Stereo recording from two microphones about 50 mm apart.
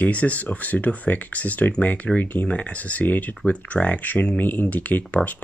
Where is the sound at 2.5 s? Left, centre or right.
Left.